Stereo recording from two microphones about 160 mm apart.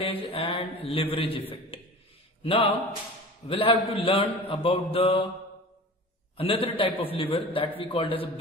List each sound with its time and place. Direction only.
0.0 s a man's voice: 35° left (ahead or behind)
2.4 s a man's voice: 35° left (ahead or behind)
6.3 s a man's voice: 35° left (ahead or behind)